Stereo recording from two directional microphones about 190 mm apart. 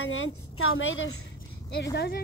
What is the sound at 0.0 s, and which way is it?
Speech, 90° left.